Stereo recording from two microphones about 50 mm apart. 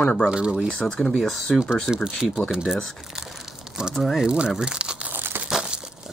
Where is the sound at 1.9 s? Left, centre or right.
Centre.